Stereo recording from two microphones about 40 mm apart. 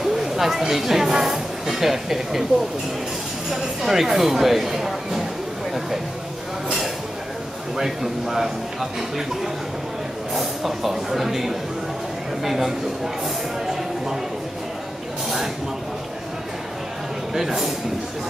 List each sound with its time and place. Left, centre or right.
0.0 s speech: centre
3.8 s speech: centre
7.7 s speech: centre
10.3 s speech: centre
15.2 s speech: centre
17.3 s speech: centre